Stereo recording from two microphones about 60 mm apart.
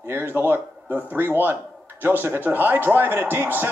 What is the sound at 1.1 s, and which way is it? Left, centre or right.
A man's voice, right.